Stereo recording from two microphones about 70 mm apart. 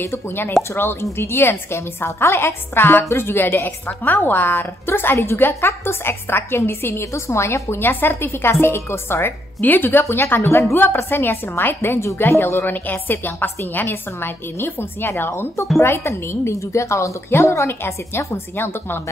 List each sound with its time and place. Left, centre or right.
0.0 s a woman's voice: left